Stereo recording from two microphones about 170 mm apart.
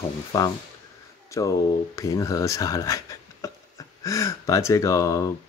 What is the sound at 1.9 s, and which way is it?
Speech, 20° left (ahead or behind).